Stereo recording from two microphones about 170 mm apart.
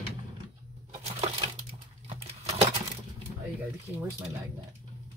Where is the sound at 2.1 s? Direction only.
35° right (ahead or behind).